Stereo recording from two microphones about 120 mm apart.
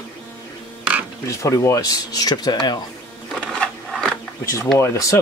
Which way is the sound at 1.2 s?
25° left (ahead or behind).